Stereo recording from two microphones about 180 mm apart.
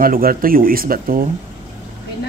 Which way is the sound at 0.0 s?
55° right (ahead or behind).